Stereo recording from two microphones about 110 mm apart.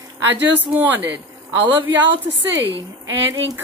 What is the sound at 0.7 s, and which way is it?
Speech, 15° right (ahead or behind).